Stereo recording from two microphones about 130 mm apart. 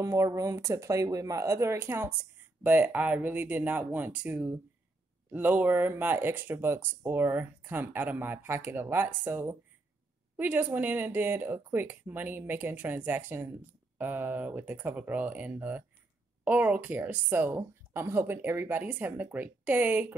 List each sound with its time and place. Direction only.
0.0 s speech: 25° right (ahead or behind)